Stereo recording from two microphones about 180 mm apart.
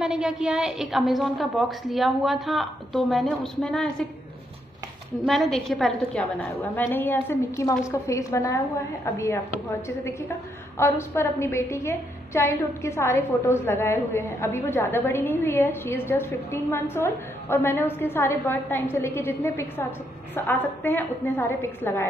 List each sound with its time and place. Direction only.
0.0 s a woman's voice: 5° right (ahead or behind)
5.2 s a woman's voice: centre (ahead or behind)